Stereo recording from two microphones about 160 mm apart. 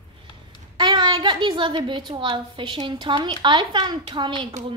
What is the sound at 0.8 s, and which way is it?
A woman's voice, 30° right (ahead or behind).